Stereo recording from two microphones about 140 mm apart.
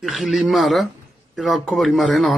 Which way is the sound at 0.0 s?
Centre (ahead or behind).